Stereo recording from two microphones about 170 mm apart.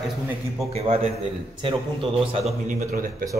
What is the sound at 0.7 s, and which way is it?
Speech, 35° right (ahead or behind).